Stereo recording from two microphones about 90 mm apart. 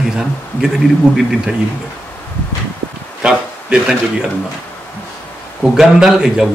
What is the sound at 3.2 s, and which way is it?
Speech, 10° right (ahead or behind).